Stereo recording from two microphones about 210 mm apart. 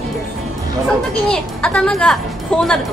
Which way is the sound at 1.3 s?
5° left (ahead or behind).